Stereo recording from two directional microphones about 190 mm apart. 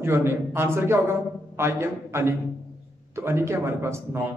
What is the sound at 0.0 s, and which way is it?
A man's voice, 15° right (ahead or behind).